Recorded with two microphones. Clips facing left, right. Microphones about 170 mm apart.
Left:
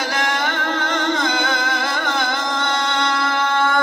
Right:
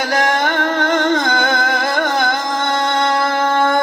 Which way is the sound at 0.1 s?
50° right (ahead or behind).